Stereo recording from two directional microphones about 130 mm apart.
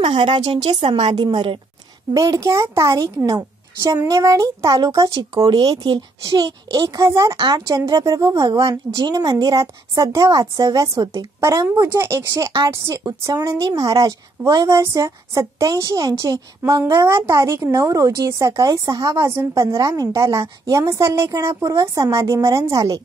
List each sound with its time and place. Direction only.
0.2 s a child's voice: 40° right (ahead or behind)
2.1 s a woman's voice: 25° right (ahead or behind)